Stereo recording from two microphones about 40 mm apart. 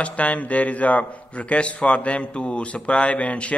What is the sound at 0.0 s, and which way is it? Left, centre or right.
A man's voice, left.